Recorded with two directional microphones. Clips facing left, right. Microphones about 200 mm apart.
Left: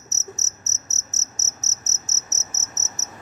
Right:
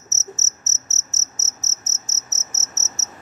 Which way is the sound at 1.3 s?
10° right (ahead or behind).